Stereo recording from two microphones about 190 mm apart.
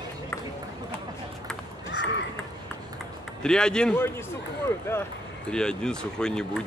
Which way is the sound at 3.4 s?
5° left (ahead or behind).